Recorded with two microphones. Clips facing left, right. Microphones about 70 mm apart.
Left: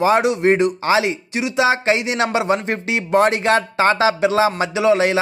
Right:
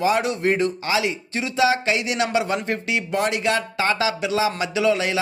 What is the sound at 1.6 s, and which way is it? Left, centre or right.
Speech, left.